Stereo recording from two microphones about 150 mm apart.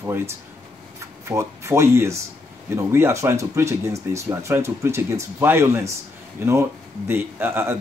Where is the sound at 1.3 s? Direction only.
20° right (ahead or behind).